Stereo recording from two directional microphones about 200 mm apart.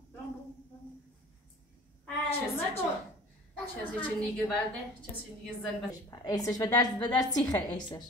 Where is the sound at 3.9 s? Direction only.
5° left (ahead or behind).